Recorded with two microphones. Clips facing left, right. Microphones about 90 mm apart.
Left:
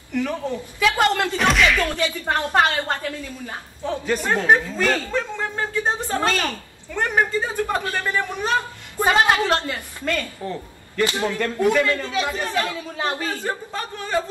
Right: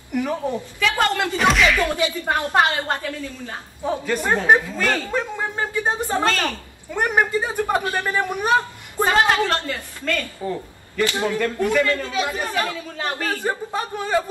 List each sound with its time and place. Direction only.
0.1 s a woman's voice: 15° right (ahead or behind)
0.7 s a woman's voice: 15° left (ahead or behind)
1.2 s speech: 5° right (ahead or behind)
1.9 s a woman's voice: 15° right (ahead or behind)
9.0 s a woman's voice: 20° left (ahead or behind)
10.4 s a man's voice: 5° right (ahead or behind)
11.6 s speech: 5° left (ahead or behind)
12.4 s a woman's voice: 15° right (ahead or behind)
12.9 s a woman's voice: 20° left (ahead or behind)
13.4 s a woman's voice: 15° right (ahead or behind)